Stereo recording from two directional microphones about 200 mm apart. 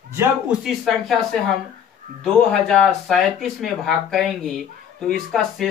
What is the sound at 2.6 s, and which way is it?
A man's voice, 5° left (ahead or behind).